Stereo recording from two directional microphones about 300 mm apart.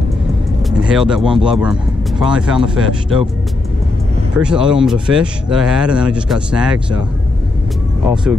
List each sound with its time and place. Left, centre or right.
0.7 s speech: centre
4.4 s speech: centre
8.1 s speech: centre